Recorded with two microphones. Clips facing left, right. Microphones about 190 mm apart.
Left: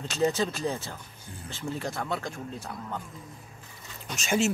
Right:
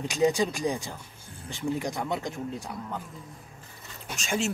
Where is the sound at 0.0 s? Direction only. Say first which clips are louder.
Right 2 dB; 15° right (ahead or behind).